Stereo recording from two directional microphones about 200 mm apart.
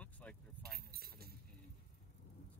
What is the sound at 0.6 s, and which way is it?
Keys jangling, 50° right (ahead or behind).